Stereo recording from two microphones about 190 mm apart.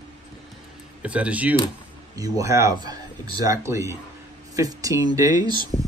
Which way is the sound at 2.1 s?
20° right (ahead or behind).